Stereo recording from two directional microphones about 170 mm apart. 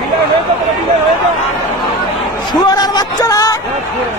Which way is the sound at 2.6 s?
25° left (ahead or behind).